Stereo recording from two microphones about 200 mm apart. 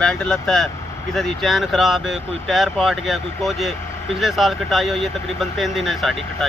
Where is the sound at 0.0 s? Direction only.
5° left (ahead or behind).